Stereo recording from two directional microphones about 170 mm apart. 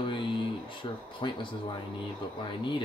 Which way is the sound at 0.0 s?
30° left (ahead or behind).